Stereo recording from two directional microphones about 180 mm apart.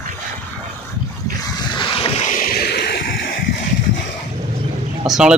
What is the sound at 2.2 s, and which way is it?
Music, 50° left (ahead or behind).